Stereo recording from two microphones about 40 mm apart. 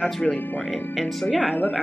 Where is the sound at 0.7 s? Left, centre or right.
Centre.